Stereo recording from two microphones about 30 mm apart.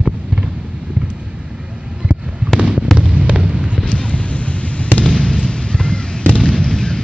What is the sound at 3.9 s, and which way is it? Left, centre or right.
Fireworks, left.